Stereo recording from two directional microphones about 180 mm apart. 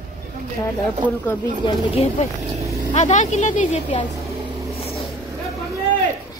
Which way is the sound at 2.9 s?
40° left (ahead or behind).